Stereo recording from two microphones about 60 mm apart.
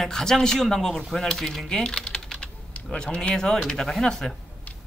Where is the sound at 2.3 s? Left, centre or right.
Centre.